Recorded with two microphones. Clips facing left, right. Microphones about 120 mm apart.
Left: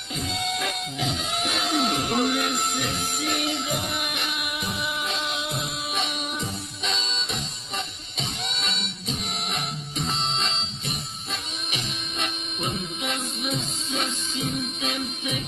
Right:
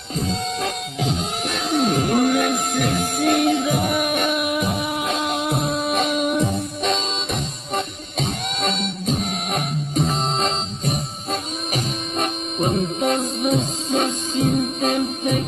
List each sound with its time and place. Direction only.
0.1 s music: 40° right (ahead or behind)